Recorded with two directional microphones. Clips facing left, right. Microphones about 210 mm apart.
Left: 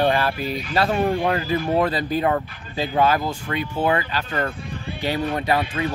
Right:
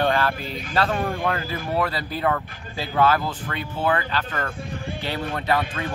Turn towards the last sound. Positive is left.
turn(degrees=15)  # may be behind; listen again after turning